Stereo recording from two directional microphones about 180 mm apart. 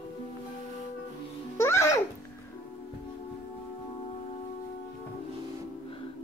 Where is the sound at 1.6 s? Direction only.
15° left (ahead or behind).